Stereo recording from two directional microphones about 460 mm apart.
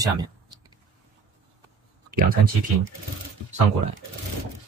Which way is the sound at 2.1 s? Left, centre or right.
Centre.